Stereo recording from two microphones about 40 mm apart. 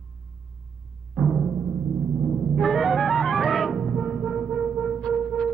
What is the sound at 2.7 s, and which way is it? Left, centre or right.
Music, centre.